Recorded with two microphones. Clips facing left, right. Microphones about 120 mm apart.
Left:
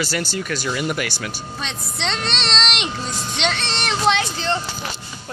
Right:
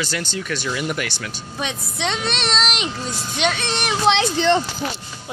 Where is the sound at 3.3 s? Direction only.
10° right (ahead or behind).